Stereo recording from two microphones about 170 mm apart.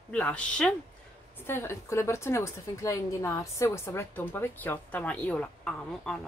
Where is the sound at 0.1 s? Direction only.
5° left (ahead or behind).